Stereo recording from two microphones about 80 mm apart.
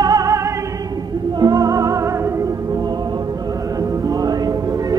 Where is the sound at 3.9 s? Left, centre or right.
Right.